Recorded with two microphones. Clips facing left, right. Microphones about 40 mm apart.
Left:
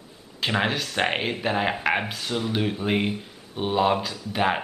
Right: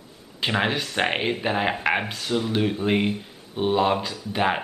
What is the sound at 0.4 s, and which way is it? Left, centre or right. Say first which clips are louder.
Speech: right 1 dB; centre.